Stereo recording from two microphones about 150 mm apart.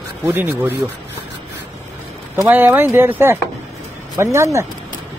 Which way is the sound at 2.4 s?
10° right (ahead or behind).